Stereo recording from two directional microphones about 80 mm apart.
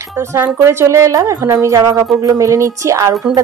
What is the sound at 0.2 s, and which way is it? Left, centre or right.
Speech, right.